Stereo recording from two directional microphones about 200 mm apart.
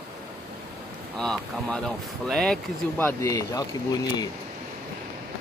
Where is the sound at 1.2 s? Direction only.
5° left (ahead or behind).